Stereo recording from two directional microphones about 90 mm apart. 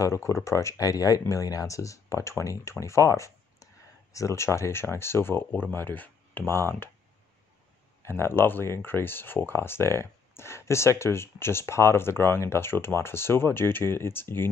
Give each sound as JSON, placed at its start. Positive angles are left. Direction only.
{"t": 0.0, "sound": "speech", "side_deg": 35}
{"t": 8.0, "sound": "speech", "side_deg": 30}